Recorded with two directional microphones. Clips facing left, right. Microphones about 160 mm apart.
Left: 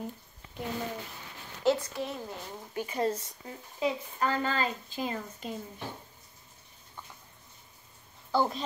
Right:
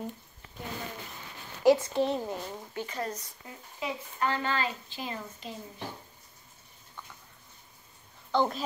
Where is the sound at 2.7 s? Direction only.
10° left (ahead or behind).